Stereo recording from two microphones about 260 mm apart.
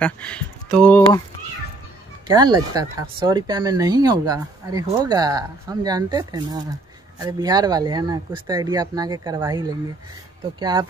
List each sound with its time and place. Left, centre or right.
0.0 s speech: centre
2.2 s speech: centre